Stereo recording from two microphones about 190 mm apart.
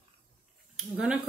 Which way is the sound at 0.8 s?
5° right (ahead or behind).